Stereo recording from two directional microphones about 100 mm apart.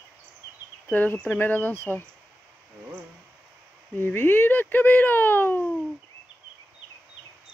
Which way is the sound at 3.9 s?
20° left (ahead or behind).